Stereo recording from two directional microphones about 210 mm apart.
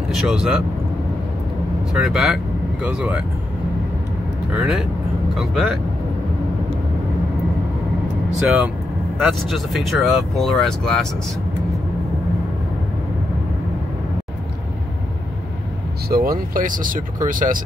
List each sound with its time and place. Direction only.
0.1 s speech: centre (ahead or behind)
1.9 s speech: 5° right (ahead or behind)
4.6 s speech: 5° right (ahead or behind)
8.4 s speech: 5° right (ahead or behind)
16.1 s speech: 45° right (ahead or behind)